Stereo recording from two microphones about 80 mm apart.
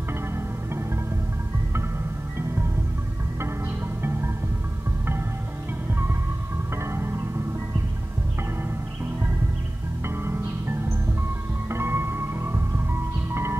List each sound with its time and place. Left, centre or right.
4.0 s music: right
5.9 s music: right
10.0 s music: right